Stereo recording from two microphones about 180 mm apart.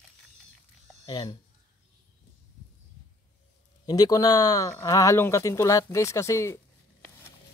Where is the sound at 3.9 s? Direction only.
20° left (ahead or behind).